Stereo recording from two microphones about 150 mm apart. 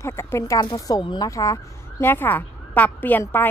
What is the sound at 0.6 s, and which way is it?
Speech, 30° left (ahead or behind).